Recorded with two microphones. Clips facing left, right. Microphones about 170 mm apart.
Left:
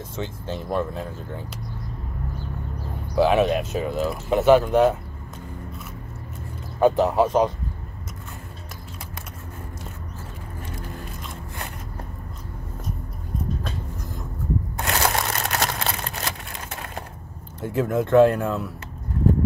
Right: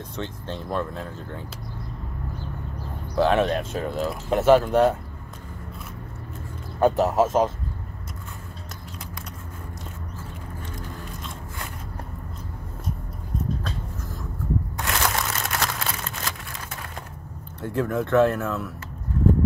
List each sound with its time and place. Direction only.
0.1 s speech: 10° left (ahead or behind)
3.2 s speech: 10° left (ahead or behind)
6.8 s speech: centre (ahead or behind)
14.8 s a sound: 35° left (ahead or behind)
17.6 s speech: 10° left (ahead or behind)